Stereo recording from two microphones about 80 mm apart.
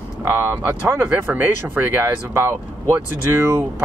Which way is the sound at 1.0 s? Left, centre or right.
Right.